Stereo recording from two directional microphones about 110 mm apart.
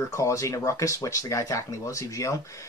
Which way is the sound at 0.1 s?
25° left (ahead or behind).